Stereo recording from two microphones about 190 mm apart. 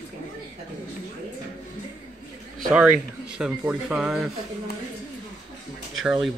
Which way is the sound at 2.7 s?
5° right (ahead or behind).